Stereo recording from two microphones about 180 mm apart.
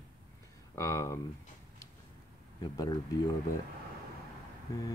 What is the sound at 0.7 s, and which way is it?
Speech, 15° left (ahead or behind).